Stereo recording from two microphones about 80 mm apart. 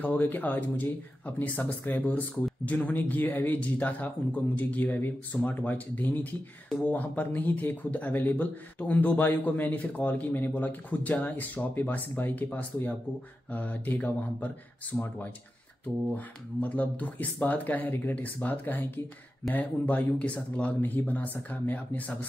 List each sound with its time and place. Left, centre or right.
0.0 s speech: left